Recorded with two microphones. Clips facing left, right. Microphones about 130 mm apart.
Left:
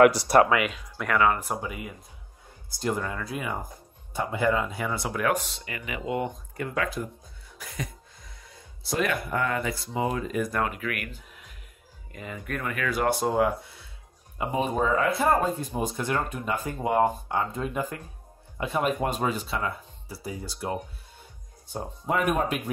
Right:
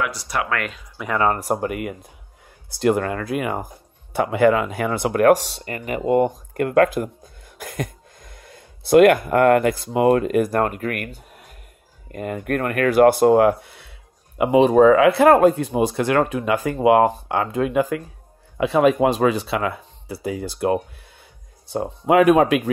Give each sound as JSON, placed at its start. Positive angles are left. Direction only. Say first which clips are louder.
{"t": 0.5, "sound": "speech", "louder": "left 1 dB", "side_deg": 5}
{"t": 1.1, "sound": "speech", "louder": "right 3 dB", "side_deg": -35}
{"t": 1.5, "sound": "speech", "louder": "right 9 dB", "side_deg": -60}
{"t": 6.3, "sound": "speech", "louder": "right 13 dB", "side_deg": -60}
{"t": 7.6, "sound": "a sound", "louder": "right 8 dB", "side_deg": -50}
{"t": 8.8, "sound": "speech", "louder": "right 15 dB", "side_deg": -60}
{"t": 10.5, "sound": "speech", "louder": "right 7 dB", "side_deg": -45}
{"t": 14.4, "sound": "speech", "louder": "right 13 dB", "side_deg": -90}